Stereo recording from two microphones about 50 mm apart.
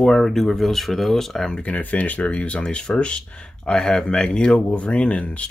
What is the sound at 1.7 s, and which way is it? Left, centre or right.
Speech, left.